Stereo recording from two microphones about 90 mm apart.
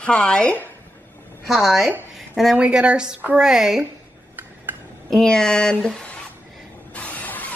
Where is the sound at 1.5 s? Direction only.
Centre (ahead or behind).